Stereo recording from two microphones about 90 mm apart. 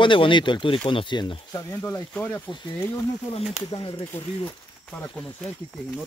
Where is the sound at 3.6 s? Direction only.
60° left (ahead or behind).